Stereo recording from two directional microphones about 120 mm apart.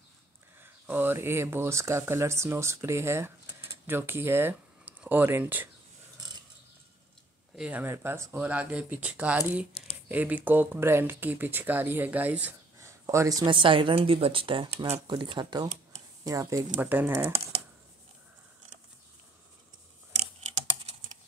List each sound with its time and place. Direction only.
0.6 s speech: 15° right (ahead or behind)
7.5 s speech: 10° right (ahead or behind)
12.7 s a sound: 25° right (ahead or behind)
13.5 s speech: 45° right (ahead or behind); by 17.3 s 20° right (ahead or behind)
20.5 s computer keyboard: 65° right (ahead or behind)